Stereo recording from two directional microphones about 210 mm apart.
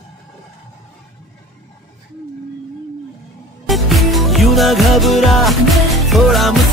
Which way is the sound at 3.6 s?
Centre (ahead or behind).